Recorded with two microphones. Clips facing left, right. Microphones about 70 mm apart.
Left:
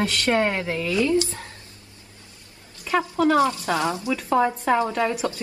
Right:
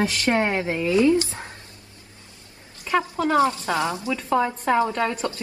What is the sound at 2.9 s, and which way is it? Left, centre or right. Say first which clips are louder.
Speech: even; centre.